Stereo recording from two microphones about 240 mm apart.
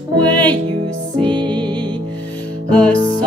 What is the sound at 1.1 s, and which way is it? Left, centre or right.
Music, centre.